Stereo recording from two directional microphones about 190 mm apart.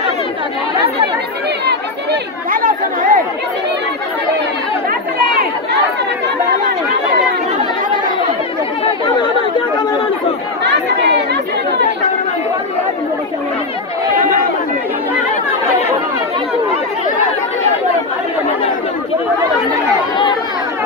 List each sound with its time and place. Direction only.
1.7 s chatter: 55° right (ahead or behind)
10.6 s chatter: 65° right (ahead or behind)